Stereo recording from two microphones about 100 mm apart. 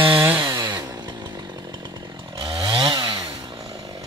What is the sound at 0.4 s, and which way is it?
Chainsaw, 45° right (ahead or behind).